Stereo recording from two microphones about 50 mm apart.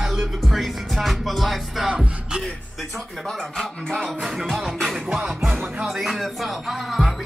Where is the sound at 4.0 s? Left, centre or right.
Centre.